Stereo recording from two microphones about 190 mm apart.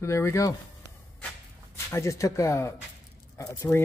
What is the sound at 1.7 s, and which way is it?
Speech, 15° left (ahead or behind).